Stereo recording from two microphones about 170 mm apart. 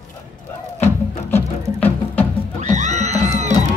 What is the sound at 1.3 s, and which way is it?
Music, 10° left (ahead or behind).